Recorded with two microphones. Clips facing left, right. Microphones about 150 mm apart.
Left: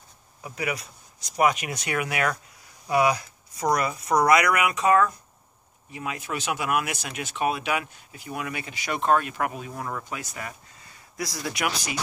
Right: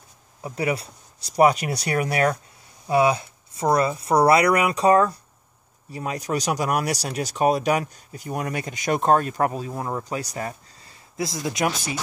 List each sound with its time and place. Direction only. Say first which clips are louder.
0.4 s speech: right 5 dB; 30° right (ahead or behind)
2.9 s speech: right 3 dB; 25° right (ahead or behind)